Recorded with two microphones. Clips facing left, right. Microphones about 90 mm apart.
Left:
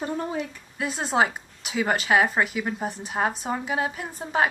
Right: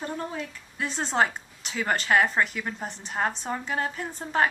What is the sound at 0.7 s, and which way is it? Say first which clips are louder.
A woman's voice: left 2 dB; 5° left (ahead or behind).